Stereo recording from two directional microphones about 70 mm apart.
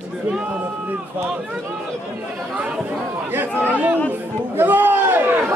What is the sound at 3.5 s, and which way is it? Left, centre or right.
Speech, left.